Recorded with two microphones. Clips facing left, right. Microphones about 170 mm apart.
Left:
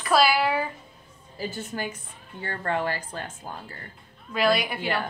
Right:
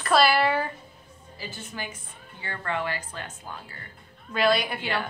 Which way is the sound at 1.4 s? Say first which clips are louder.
Left 6 dB; 40° left (ahead or behind).